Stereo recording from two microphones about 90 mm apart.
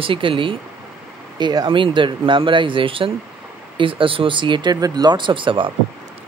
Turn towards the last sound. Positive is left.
turn(degrees=-70)  # may be behind; listen again after turning